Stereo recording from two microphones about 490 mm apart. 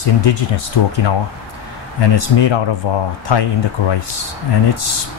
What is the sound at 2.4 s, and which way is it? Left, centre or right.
Speech, left.